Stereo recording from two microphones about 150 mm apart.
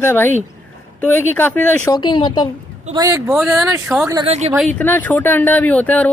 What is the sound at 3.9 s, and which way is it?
Speech, 5° right (ahead or behind).